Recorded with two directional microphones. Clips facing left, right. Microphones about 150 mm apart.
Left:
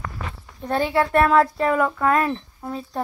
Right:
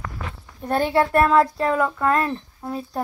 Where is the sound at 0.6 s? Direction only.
15° right (ahead or behind).